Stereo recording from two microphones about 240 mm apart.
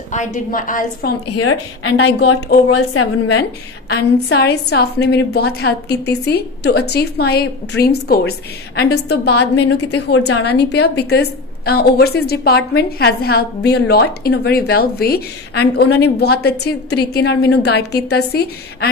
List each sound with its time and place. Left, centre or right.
0.1 s a woman's voice: left
1.3 s a woman's voice: left
2.0 s a woman's voice: left
2.7 s a woman's voice: left
3.9 s a woman's voice: left
9.8 s a woman's voice: left
10.2 s a woman's voice: left